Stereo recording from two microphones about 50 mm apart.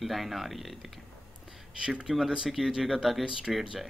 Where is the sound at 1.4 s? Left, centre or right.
Centre.